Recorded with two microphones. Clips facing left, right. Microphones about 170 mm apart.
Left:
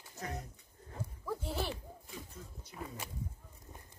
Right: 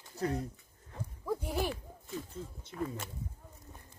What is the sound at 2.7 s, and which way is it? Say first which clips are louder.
Speech: right 7 dB; 10° left (ahead or behind).